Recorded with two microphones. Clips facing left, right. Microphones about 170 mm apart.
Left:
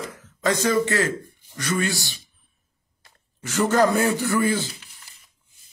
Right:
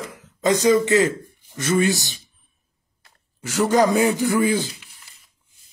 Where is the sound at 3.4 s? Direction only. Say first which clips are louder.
Right 2 dB; 10° right (ahead or behind).